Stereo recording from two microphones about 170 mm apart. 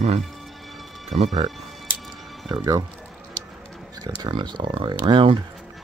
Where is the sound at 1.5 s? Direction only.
Centre (ahead or behind).